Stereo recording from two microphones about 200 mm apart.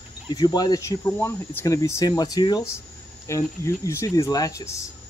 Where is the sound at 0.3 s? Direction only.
20° left (ahead or behind).